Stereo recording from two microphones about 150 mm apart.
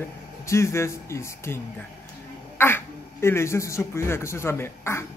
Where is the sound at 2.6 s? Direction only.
15° left (ahead or behind).